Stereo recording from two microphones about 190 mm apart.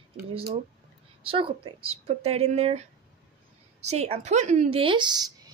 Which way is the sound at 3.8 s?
35° right (ahead or behind).